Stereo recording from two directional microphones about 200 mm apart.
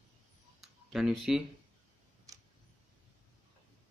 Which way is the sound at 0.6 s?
Centre (ahead or behind).